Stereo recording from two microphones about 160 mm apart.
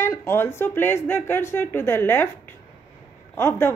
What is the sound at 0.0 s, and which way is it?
A woman's voice, 15° left (ahead or behind).